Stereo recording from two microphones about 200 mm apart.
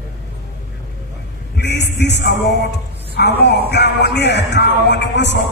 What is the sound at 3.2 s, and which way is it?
Speech, 55° left (ahead or behind).